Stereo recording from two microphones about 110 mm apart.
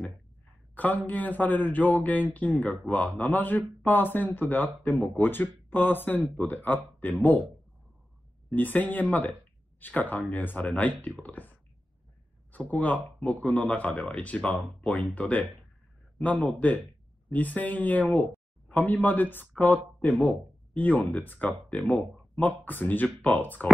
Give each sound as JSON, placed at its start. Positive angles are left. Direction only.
{"t": 0.7, "sound": "speech", "side_deg": 15}
{"t": 2.5, "sound": "speech", "side_deg": 5}
{"t": 8.5, "sound": "speech", "side_deg": 15}
{"t": 12.5, "sound": "speech", "side_deg": 15}
{"t": 13.2, "sound": "speech", "side_deg": 5}